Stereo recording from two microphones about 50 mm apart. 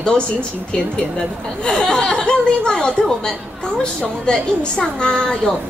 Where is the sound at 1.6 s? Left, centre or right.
Centre.